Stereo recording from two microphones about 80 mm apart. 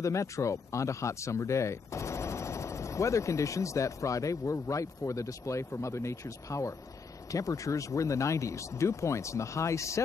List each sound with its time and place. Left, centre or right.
0.0 s speech: left